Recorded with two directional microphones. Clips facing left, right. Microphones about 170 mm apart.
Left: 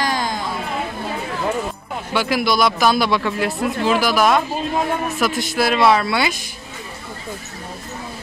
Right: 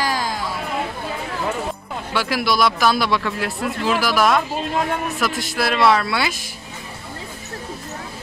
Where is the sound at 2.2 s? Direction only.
Centre (ahead or behind).